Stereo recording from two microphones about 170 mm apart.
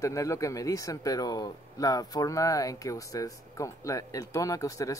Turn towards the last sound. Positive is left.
turn(degrees=20)  # may be behind; listen again after turning